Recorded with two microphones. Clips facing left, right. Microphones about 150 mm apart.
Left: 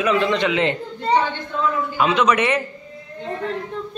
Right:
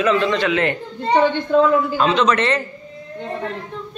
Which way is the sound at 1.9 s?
10° left (ahead or behind).